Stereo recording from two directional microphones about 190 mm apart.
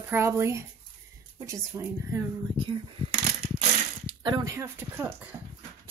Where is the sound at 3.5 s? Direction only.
25° right (ahead or behind).